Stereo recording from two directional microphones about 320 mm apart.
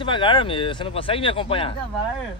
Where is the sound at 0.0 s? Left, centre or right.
Centre.